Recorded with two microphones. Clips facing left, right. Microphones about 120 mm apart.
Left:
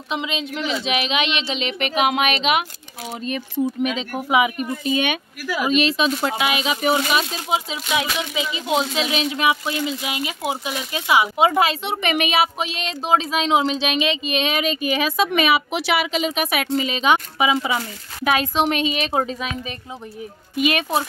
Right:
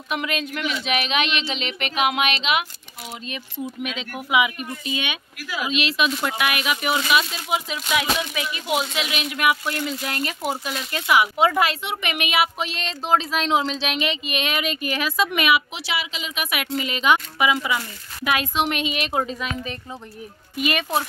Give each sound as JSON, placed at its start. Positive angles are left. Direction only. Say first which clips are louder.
{"t": 0.1, "sound": "speech", "louder": "left 1 dB", "side_deg": 20}
{"t": 0.8, "sound": "speech", "louder": "even", "side_deg": -40}
{"t": 2.0, "sound": "speech", "louder": "left 2 dB", "side_deg": 40}
{"t": 7.5, "sound": "speech", "louder": "left 1 dB", "side_deg": 25}
{"t": 15.7, "sound": "speech", "louder": "left 8 dB", "side_deg": 60}
{"t": 16.7, "sound": "speech", "louder": "left 1 dB", "side_deg": 25}